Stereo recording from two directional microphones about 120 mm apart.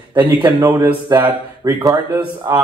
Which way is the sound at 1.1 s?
30° right (ahead or behind).